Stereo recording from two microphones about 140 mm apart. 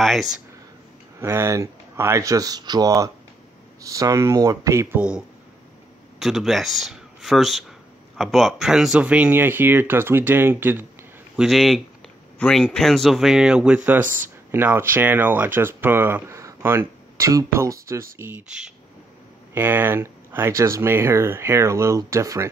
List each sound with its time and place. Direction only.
0.0 s a man's voice: centre (ahead or behind)
1.2 s speech: 20° right (ahead or behind)
4.9 s speech: 5° right (ahead or behind)
11.3 s a man's voice: centre (ahead or behind)
14.0 s speech: 70° right (ahead or behind)
14.5 s speech: 15° right (ahead or behind)